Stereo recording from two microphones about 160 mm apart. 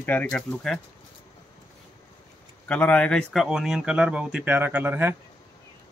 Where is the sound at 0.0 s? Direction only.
10° left (ahead or behind).